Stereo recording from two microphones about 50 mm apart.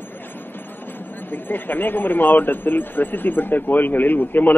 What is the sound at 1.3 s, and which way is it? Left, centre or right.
Speech, left.